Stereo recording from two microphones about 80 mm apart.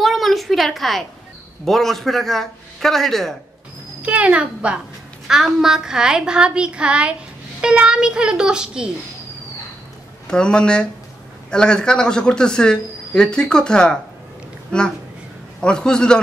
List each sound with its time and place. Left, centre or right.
0.0 s a sound: centre
1.6 s a man's voice: centre
4.0 s a woman's voice: centre
10.2 s speech: centre
15.6 s speech: centre